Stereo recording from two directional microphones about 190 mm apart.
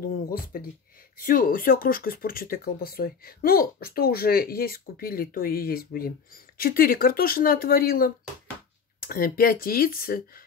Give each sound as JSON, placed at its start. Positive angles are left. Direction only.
{"t": 0.3, "sound": "speech", "side_deg": 50}